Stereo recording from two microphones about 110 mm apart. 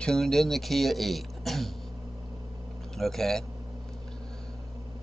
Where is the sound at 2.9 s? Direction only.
5° left (ahead or behind).